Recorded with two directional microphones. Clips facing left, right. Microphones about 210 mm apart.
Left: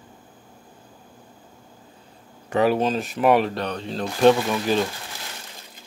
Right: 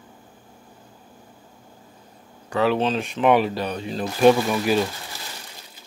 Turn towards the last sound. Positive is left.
turn(degrees=-10)  # may be behind; listen again after turning